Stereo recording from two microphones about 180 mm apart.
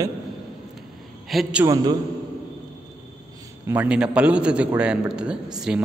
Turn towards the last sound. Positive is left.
turn(degrees=-5)  # may be behind; listen again after turning